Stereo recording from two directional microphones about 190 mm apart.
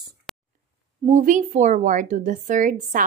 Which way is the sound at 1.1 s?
40° right (ahead or behind).